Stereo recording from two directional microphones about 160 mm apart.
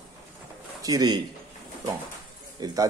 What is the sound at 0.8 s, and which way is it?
Speech, 25° right (ahead or behind).